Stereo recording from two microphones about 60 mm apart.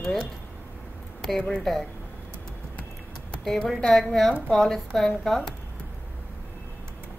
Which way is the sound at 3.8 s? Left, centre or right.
Centre.